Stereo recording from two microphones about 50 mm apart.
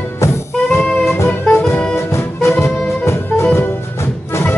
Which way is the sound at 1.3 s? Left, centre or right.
Left.